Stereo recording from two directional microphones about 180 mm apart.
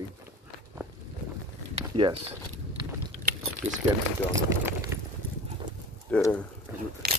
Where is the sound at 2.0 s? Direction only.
25° right (ahead or behind).